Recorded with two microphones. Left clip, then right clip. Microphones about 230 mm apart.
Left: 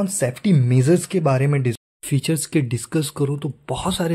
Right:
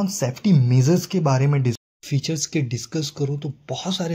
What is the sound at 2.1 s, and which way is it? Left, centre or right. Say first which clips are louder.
Speech: left 3 dB; left.